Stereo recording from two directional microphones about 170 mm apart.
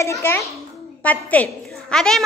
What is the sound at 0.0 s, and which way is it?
A woman's voice, 15° left (ahead or behind).